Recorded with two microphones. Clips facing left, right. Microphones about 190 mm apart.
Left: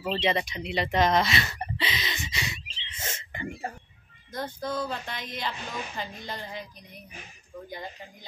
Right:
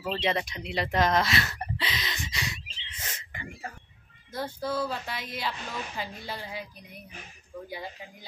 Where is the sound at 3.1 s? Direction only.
25° left (ahead or behind).